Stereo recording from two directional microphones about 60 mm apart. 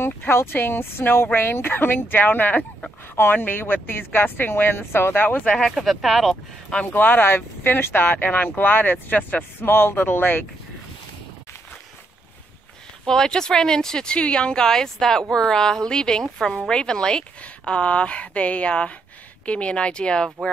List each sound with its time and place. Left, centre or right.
0.0 s speech: left
5.4 s speech: centre
6.9 s speech: left
13.0 s speech: centre